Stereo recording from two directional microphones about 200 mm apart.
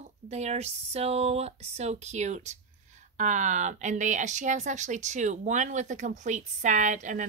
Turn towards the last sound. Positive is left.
turn(degrees=-40)  # may be behind; listen again after turning